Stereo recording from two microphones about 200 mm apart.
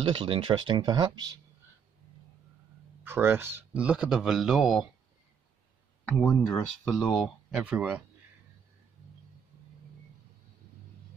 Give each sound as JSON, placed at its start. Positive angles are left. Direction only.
{"t": 0.0, "sound": "speech", "side_deg": -25}
{"t": 3.0, "sound": "speech", "side_deg": -10}
{"t": 6.0, "sound": "speech", "side_deg": 10}
{"t": 7.5, "sound": "speech", "side_deg": -5}